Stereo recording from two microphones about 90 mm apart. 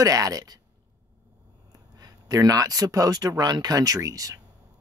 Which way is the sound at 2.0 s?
45° right (ahead or behind).